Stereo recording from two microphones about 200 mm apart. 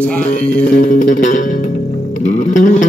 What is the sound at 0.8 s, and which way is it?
Music, 40° left (ahead or behind).